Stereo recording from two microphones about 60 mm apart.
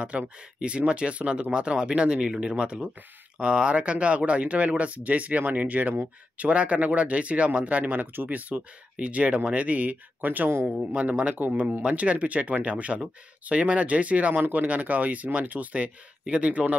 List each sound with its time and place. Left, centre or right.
0.1 s speech: centre